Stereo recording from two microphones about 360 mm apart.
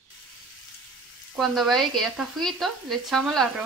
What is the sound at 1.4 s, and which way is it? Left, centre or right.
A woman's voice, centre.